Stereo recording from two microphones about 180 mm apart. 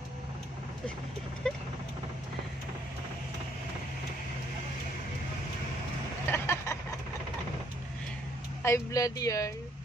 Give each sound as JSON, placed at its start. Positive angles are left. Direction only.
{"t": 1.5, "sound": "speech", "side_deg": 0}
{"t": 6.3, "sound": "a sound", "side_deg": 15}
{"t": 8.6, "sound": "speech", "side_deg": 15}